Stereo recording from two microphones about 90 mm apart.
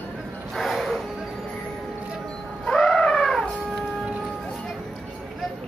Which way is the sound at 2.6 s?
5° left (ahead or behind).